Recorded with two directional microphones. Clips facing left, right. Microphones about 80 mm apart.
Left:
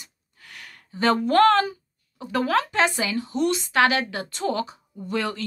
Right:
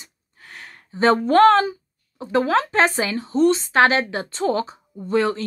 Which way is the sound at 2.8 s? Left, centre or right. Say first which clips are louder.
Right 3 dB; right.